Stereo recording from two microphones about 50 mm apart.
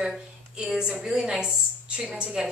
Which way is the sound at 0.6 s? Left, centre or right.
Centre.